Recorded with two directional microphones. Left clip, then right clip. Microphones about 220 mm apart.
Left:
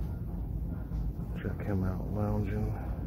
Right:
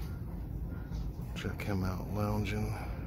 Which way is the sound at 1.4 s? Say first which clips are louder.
Left 1 dB; 20° right (ahead or behind).